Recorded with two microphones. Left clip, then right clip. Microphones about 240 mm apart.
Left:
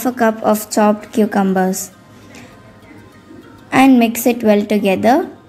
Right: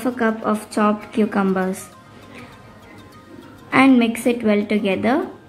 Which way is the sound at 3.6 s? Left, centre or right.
Centre.